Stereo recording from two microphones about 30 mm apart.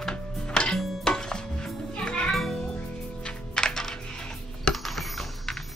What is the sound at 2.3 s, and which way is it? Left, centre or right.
Music, centre.